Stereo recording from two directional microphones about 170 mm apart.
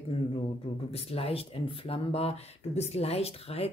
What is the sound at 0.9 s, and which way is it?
Speech, 35° left (ahead or behind).